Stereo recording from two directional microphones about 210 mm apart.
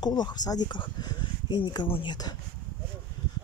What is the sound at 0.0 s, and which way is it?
Speech, 20° left (ahead or behind).